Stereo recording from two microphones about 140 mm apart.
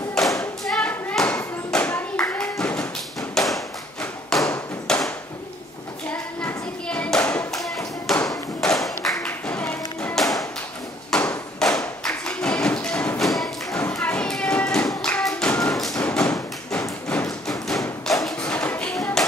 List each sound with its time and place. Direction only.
0.2 s clapping: 5° left (ahead or behind)
4.5 s tap: 5° left (ahead or behind)
6.0 s clapping: 10° left (ahead or behind)
7.5 s tap: centre (ahead or behind)
9.2 s music: 10° left (ahead or behind)
11.1 s a sound: 5° left (ahead or behind)
12.0 s music: 5° left (ahead or behind)
13.2 s thump: centre (ahead or behind)
13.7 s tap: 10° left (ahead or behind)
15.7 s thump: centre (ahead or behind)
16.3 s thump: 20° left (ahead or behind)
17.1 s thump: 5° left (ahead or behind)
18.0 s music: centre (ahead or behind)